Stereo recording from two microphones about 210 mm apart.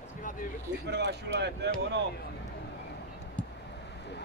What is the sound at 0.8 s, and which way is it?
Speech, 55° right (ahead or behind).